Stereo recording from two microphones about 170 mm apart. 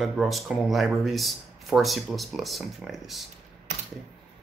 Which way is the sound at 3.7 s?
45° right (ahead or behind).